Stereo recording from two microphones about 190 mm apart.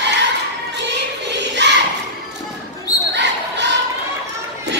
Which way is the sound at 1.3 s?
65° right (ahead or behind).